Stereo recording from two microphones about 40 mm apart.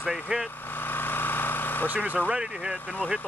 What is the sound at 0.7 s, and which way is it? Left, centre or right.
Vehicle, left.